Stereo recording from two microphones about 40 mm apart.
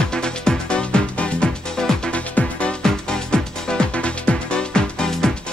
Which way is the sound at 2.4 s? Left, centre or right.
Left.